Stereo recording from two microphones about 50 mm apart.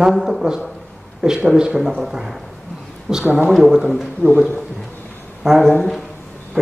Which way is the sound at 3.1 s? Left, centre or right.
Centre.